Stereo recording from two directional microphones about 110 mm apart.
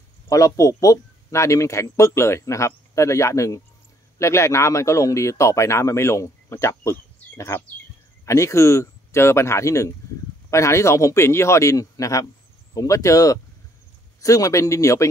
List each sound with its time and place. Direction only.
0.3 s speech: 30° left (ahead or behind)